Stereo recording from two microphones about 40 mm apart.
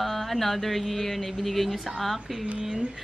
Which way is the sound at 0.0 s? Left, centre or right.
Centre.